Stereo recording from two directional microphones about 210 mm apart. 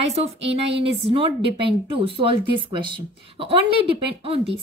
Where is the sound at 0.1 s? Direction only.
30° right (ahead or behind).